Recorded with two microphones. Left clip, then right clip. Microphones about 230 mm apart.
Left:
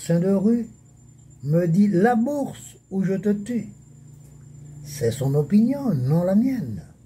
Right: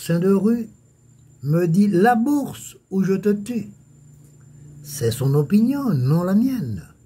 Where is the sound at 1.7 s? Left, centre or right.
Right.